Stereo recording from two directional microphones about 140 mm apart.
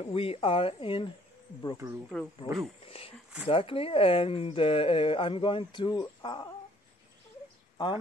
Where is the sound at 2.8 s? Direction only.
45° left (ahead or behind).